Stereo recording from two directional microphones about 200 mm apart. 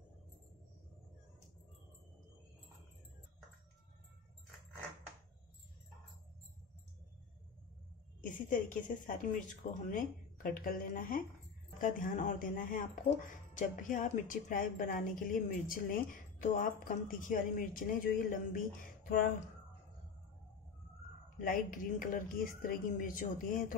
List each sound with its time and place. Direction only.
8.2 s a woman's voice: 40° left (ahead or behind)
21.4 s a woman's voice: 45° left (ahead or behind)